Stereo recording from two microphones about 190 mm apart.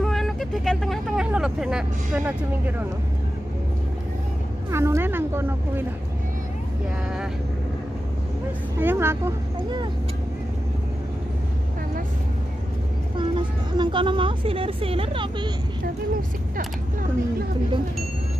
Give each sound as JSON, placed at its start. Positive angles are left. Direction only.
{"t": 0.0, "sound": "speech", "side_deg": 0}
{"t": 4.6, "sound": "speech", "side_deg": -15}
{"t": 8.7, "sound": "speech", "side_deg": -10}
{"t": 13.2, "sound": "speech", "side_deg": -25}